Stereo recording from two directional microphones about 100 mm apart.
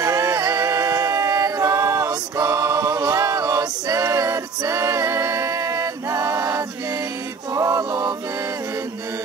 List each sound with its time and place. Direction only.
0.0 s a capella: 35° right (ahead or behind)
7.5 s music: 30° right (ahead or behind)